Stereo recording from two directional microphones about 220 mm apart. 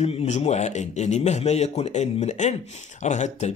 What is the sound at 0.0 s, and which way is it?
A man's voice, 30° left (ahead or behind).